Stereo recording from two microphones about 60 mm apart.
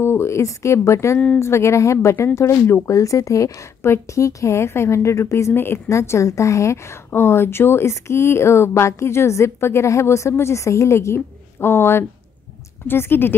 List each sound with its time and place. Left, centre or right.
0.0 s a woman's voice: left
5.5 s speech: left
5.9 s a woman's voice: left